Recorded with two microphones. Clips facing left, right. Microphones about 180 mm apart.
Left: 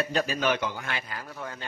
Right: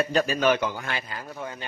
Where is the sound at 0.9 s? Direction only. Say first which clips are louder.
Right 2 dB; 20° right (ahead or behind).